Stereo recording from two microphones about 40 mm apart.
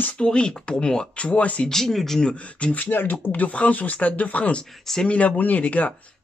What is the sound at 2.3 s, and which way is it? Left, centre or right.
Speech, left.